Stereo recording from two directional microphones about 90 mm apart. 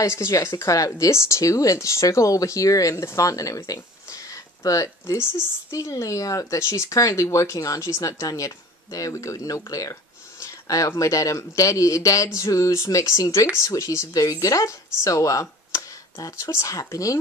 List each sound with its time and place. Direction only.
0.0 s speech: 30° left (ahead or behind)